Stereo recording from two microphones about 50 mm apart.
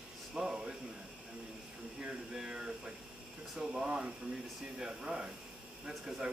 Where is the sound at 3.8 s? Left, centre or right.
Right.